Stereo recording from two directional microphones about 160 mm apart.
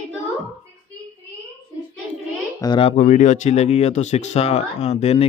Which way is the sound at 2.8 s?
45° left (ahead or behind).